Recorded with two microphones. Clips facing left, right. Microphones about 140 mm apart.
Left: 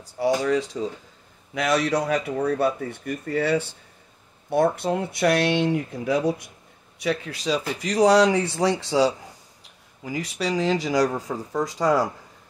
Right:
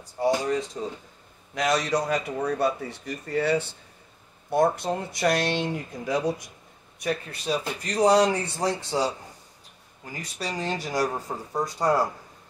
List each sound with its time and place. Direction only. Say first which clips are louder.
0.2 s speech: left 2 dB; 90° left
1.5 s speech: left 2 dB; 60° left (ahead or behind)
7.0 s speech: left 3 dB; 85° left
10.1 s speech: left 7 dB; 90° left